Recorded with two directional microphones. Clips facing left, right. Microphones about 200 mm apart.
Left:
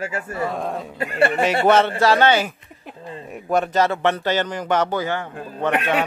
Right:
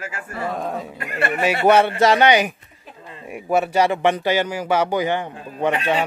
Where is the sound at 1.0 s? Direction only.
30° left (ahead or behind).